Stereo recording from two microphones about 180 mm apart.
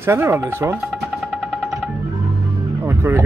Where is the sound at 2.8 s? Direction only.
15° right (ahead or behind).